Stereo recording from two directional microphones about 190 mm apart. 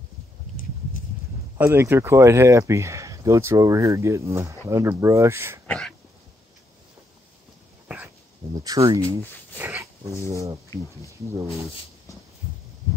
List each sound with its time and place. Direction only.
1.6 s speech: 10° right (ahead or behind)
5.7 s throat clearing: centre (ahead or behind)
8.6 s speech: 20° right (ahead or behind)
9.6 s dog: 10° right (ahead or behind)
10.3 s speech: 15° right (ahead or behind)